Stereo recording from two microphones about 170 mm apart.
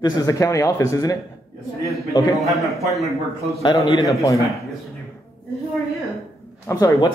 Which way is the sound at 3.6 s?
25° left (ahead or behind).